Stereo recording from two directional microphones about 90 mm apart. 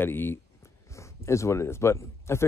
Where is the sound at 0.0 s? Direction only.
25° left (ahead or behind).